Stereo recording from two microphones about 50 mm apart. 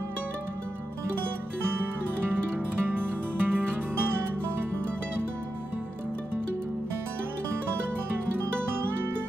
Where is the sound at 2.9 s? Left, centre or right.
Right.